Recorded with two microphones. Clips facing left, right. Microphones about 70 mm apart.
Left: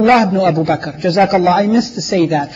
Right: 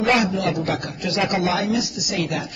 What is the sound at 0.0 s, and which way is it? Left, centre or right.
A man's voice, left.